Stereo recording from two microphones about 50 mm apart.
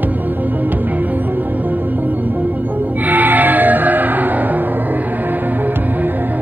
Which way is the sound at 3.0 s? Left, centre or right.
Right.